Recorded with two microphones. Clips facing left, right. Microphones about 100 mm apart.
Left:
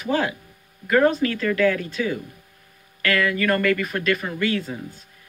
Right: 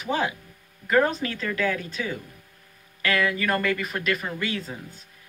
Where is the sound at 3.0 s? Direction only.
20° right (ahead or behind).